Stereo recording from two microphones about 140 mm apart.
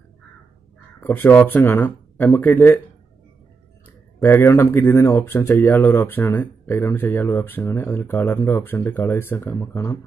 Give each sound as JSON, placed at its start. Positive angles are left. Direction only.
{"t": 1.0, "sound": "speech", "side_deg": 15}
{"t": 4.2, "sound": "speech", "side_deg": 15}